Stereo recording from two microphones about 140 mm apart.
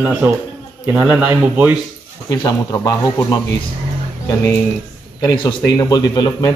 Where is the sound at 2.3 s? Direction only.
25° left (ahead or behind).